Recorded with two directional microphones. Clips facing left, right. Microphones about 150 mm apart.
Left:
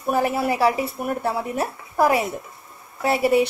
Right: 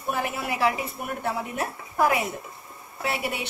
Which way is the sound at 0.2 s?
40° left (ahead or behind).